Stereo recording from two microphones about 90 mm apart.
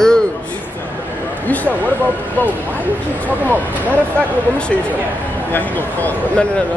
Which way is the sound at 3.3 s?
20° right (ahead or behind).